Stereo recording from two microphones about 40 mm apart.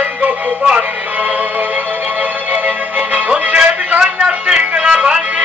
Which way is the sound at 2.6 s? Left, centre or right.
Right.